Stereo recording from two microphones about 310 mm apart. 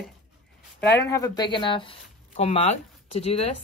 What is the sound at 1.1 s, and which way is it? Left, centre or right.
A woman's voice, centre.